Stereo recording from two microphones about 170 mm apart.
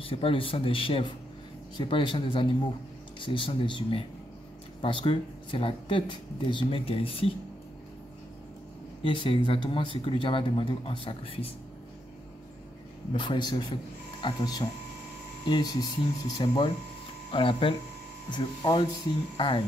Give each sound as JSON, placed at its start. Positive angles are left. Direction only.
{"t": 0.0, "sound": "speech", "side_deg": 30}
{"t": 9.1, "sound": "speech", "side_deg": 30}
{"t": 13.1, "sound": "speech", "side_deg": 30}